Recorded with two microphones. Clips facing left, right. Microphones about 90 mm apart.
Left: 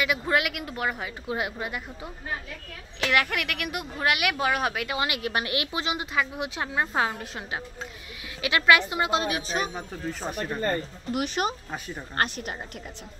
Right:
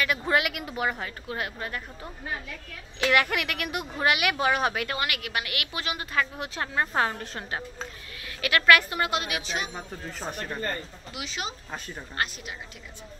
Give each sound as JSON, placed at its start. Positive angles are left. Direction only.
{"t": 0.0, "sound": "a woman's voice", "side_deg": 5}
{"t": 1.2, "sound": "a woman's voice", "side_deg": 20}
{"t": 3.0, "sound": "a woman's voice", "side_deg": 0}
{"t": 4.9, "sound": "a woman's voice", "side_deg": 25}
{"t": 8.4, "sound": "a woman's voice", "side_deg": 20}
{"t": 9.2, "sound": "a woman's voice", "side_deg": 35}
{"t": 11.1, "sound": "a woman's voice", "side_deg": 50}